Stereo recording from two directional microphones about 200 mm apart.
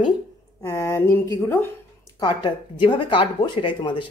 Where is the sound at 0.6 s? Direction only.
15° left (ahead or behind).